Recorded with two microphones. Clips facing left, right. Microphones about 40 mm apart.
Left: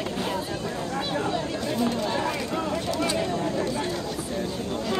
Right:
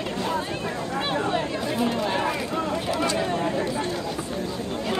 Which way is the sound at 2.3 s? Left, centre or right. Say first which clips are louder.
Right 1 dB; centre.